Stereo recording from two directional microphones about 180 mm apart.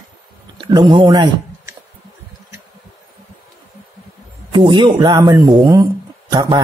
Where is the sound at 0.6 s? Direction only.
25° right (ahead or behind).